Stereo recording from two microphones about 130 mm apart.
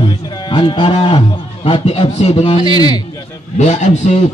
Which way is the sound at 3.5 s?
65° left (ahead or behind).